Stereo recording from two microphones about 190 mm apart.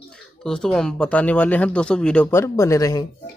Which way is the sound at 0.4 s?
5° left (ahead or behind).